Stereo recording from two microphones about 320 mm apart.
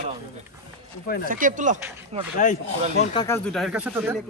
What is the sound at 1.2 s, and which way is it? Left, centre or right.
Speech, right.